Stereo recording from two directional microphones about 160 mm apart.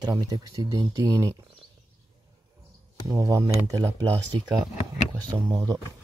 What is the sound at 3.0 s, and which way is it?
Speech, 20° right (ahead or behind).